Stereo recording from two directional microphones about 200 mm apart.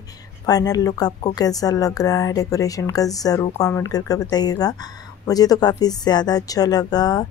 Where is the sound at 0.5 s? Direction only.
20° left (ahead or behind).